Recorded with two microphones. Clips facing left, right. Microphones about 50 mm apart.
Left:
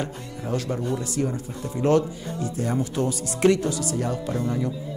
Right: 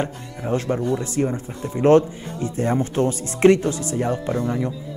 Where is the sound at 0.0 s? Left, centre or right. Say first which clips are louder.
Right 4 dB; right.